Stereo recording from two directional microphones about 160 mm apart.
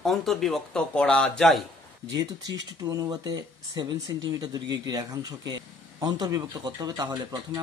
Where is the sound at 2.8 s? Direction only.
25° right (ahead or behind).